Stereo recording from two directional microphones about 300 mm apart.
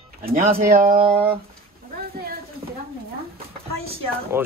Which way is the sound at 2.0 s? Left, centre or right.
Right.